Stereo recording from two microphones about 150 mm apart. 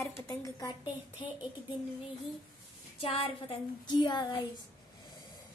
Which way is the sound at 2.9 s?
40° left (ahead or behind).